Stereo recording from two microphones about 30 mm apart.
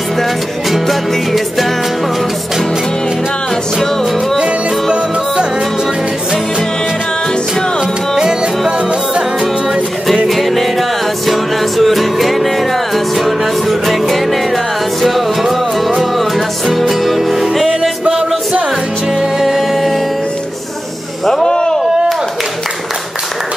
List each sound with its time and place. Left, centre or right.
0.7 s music: centre
8.2 s music: right
10.2 s music: centre
19.4 s music: centre
21.5 s a sound: left